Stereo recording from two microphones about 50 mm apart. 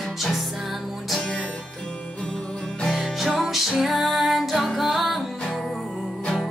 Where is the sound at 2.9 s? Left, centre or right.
Centre.